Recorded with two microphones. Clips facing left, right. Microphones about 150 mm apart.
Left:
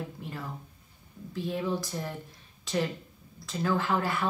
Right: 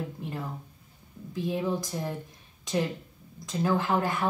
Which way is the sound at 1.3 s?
15° right (ahead or behind).